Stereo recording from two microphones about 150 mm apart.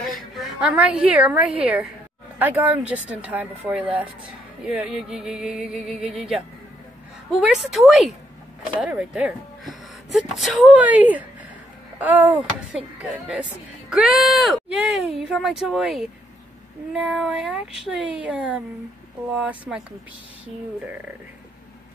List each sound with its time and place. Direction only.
0.0 s a woman's voice: centre (ahead or behind)